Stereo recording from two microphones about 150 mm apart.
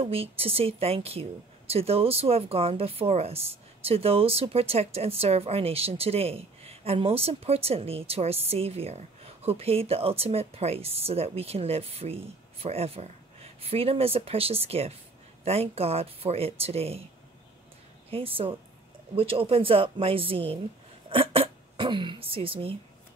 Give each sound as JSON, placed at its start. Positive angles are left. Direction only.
{"t": 0.0, "sound": "speech", "side_deg": -40}
{"t": 18.1, "sound": "speech", "side_deg": -40}
{"t": 21.1, "sound": "throat clearing", "side_deg": -35}